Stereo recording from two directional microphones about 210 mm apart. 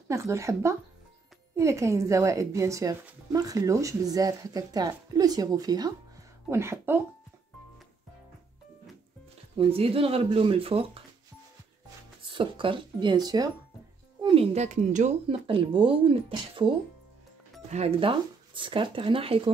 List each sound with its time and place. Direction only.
0.1 s speech: 15° right (ahead or behind)
9.6 s speech: 25° right (ahead or behind)
12.3 s a woman's voice: 25° right (ahead or behind)
15.2 s speech: 25° right (ahead or behind)
17.6 s speech: 30° right (ahead or behind)